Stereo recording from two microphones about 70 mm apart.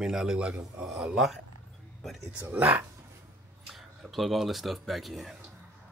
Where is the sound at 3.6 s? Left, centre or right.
Centre.